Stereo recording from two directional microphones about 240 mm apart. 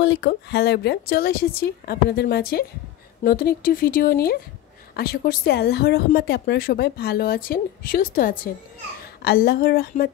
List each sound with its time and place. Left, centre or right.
0.0 s speech: left